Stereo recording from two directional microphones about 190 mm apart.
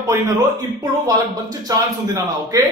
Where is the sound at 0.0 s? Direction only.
15° right (ahead or behind).